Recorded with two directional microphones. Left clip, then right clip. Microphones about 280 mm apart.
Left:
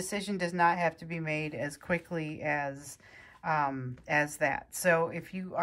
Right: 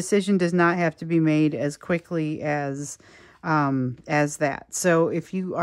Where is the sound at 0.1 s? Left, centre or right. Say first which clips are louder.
Right 14 dB; right.